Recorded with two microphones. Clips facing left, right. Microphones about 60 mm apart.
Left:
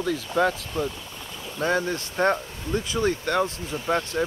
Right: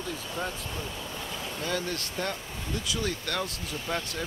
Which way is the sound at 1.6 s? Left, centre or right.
Left.